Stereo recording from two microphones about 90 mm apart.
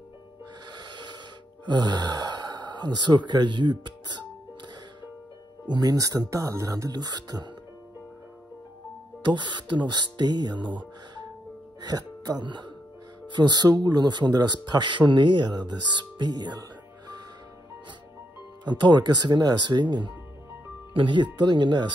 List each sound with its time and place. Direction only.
0.7 s music: 55° right (ahead or behind)
1.7 s speech: 55° right (ahead or behind)
5.7 s speech: 50° right (ahead or behind)
9.2 s speech: 60° right (ahead or behind)
18.6 s speech: 55° right (ahead or behind)